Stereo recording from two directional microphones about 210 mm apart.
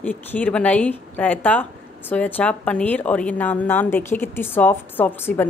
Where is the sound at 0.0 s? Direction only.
5° left (ahead or behind).